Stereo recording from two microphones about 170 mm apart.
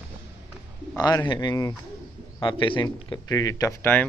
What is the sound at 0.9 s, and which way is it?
Speech, 20° left (ahead or behind).